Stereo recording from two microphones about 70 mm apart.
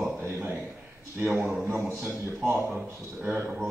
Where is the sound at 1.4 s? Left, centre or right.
Centre.